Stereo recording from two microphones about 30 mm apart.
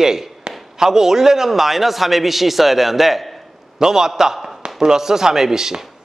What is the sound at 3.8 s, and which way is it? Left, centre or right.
A man's voice, centre.